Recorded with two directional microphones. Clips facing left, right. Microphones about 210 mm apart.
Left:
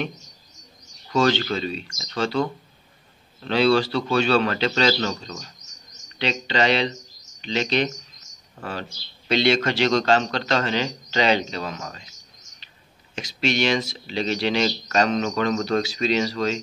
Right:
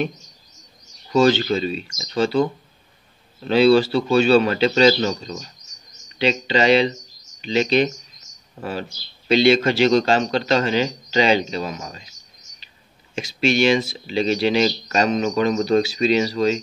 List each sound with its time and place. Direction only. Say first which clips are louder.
1.1 s speech: right 4 dB; 5° right (ahead or behind)
1.9 s speech: right 4 dB; 20° right (ahead or behind)
2.1 s a man's voice: right 5 dB; 5° right (ahead or behind)
9.3 s a man's voice: right 5 dB; 10° right (ahead or behind)
13.1 s a man's voice: right 4 dB; 10° right (ahead or behind)